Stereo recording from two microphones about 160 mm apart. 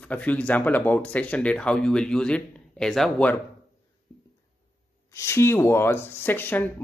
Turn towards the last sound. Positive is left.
turn(degrees=10)  # may be behind; listen again after turning